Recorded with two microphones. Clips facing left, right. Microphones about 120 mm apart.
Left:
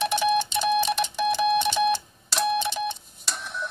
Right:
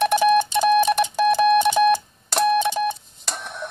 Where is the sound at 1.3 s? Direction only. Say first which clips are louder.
Right 6 dB; 55° right (ahead or behind).